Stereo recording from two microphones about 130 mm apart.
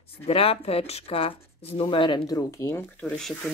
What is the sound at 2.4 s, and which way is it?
Speech, 20° left (ahead or behind).